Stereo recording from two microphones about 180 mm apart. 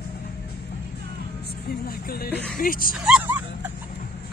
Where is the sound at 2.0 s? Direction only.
55° left (ahead or behind).